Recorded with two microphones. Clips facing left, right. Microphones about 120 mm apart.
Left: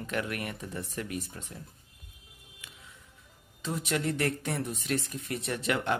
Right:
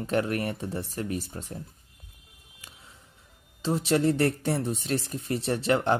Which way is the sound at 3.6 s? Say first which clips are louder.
Right 7 dB; 30° right (ahead or behind).